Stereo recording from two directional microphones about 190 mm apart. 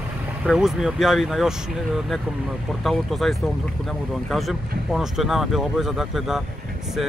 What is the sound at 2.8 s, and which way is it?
Speech, centre (ahead or behind).